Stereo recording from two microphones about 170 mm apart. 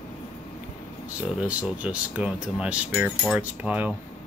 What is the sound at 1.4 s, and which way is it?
Cutlery, 5° right (ahead or behind).